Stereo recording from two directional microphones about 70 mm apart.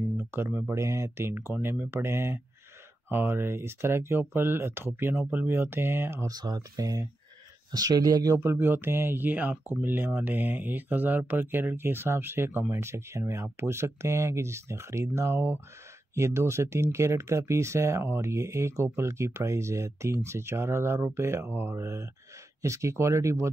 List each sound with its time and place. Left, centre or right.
0.2 s a sound: right
0.7 s speech: right
6.2 s speech: right
8.4 s speech: right